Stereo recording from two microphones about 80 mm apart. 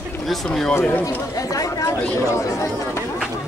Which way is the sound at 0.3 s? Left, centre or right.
Centre.